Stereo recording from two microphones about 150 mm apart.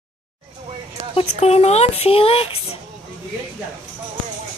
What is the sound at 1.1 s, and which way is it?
Speech, 45° left (ahead or behind).